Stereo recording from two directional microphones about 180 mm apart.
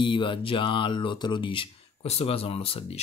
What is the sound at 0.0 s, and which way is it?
Speech, 25° left (ahead or behind).